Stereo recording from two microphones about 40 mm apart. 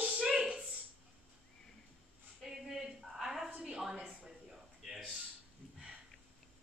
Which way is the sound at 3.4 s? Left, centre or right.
Right.